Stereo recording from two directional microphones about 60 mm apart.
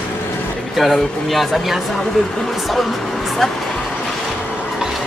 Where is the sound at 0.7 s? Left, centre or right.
Centre.